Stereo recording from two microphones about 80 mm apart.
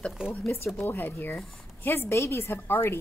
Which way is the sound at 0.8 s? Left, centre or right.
Left.